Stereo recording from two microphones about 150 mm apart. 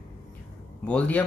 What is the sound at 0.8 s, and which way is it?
Speech, 10° left (ahead or behind).